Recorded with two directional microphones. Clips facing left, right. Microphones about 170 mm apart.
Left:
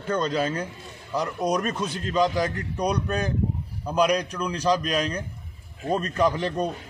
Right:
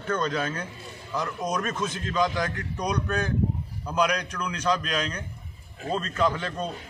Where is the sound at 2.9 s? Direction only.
10° left (ahead or behind).